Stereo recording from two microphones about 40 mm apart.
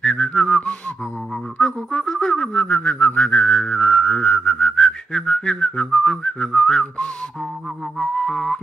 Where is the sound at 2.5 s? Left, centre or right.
Left.